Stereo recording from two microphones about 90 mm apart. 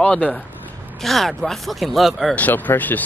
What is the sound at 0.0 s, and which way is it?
Speech, 15° left (ahead or behind).